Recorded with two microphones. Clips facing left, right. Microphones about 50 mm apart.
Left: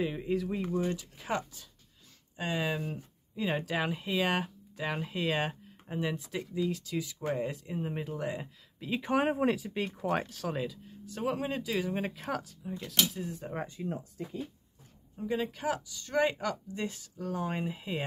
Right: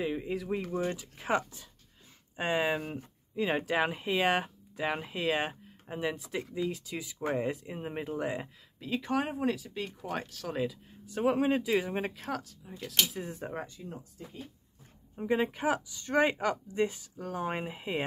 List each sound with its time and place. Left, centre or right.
0.0 s speech: centre
0.8 s speech: right
3.3 s speech: centre
6.4 s speech: centre
8.7 s speech: centre
9.3 s speech: left
10.1 s speech: centre
10.5 s speech: centre
12.0 s speech: centre
12.7 s speech: centre
13.2 s speech: right
13.8 s speech: left
15.1 s speech: right